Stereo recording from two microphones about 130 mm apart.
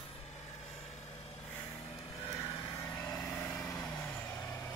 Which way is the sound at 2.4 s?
45° left (ahead or behind).